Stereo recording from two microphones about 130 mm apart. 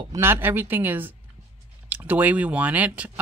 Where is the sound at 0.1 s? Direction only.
20° right (ahead or behind).